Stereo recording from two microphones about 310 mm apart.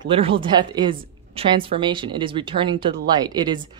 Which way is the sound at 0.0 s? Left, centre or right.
Centre.